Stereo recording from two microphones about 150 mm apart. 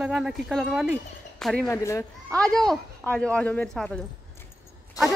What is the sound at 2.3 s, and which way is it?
Speech, 5° left (ahead or behind).